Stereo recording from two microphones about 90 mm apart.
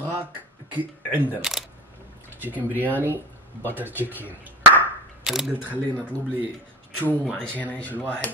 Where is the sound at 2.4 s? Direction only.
20° right (ahead or behind).